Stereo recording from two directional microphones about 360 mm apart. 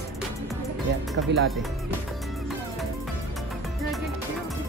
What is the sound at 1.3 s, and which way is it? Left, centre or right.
Speech, right.